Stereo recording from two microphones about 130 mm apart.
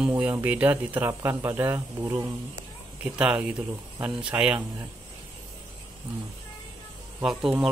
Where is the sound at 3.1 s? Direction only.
10° right (ahead or behind).